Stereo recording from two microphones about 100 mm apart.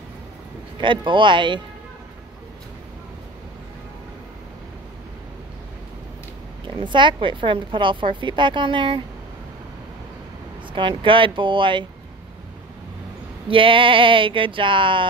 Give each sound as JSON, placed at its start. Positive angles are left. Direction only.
{"t": 0.7, "sound": "a woman's voice", "side_deg": -55}
{"t": 6.6, "sound": "a woman's voice", "side_deg": -55}
{"t": 10.7, "sound": "speech", "side_deg": -60}
{"t": 13.5, "sound": "speech", "side_deg": -60}